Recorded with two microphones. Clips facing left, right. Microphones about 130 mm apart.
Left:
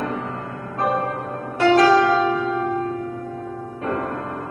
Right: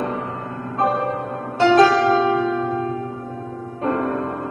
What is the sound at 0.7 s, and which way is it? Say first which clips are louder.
Music: right 2 dB; 25° right (ahead or behind).